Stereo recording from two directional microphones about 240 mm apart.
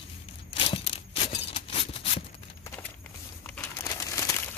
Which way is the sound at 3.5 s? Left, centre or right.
Centre.